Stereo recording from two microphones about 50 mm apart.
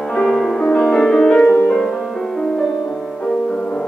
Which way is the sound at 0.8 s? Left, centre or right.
Centre.